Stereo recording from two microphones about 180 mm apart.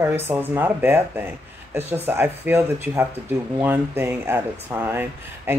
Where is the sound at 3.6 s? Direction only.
10° right (ahead or behind).